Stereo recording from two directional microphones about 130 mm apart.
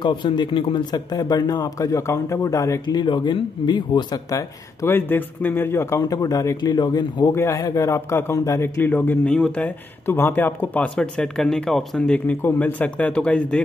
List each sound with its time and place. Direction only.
0.0 s a man's voice: 35° left (ahead or behind)
7.3 s a man's voice: 20° left (ahead or behind)